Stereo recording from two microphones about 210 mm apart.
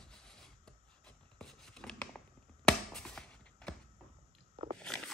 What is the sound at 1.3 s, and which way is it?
Writing, 5° left (ahead or behind).